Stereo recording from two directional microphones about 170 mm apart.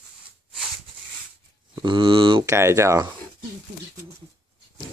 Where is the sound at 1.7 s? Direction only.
30° right (ahead or behind).